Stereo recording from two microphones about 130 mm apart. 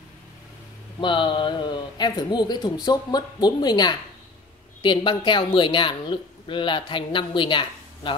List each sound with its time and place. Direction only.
1.0 s speech: 35° left (ahead or behind)